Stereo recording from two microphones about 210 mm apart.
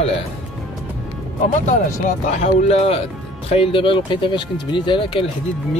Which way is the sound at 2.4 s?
30° left (ahead or behind).